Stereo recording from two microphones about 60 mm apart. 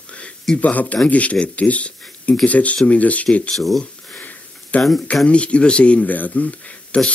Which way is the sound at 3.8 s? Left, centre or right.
Left.